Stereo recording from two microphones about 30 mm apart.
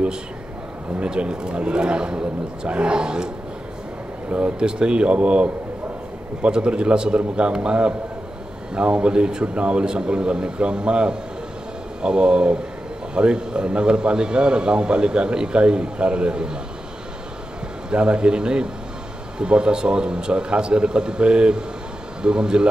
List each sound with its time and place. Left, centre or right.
1.0 s a man's voice: right
4.3 s speech: right
4.6 s a man's voice: right
6.5 s a man's voice: right
17.8 s a man's voice: right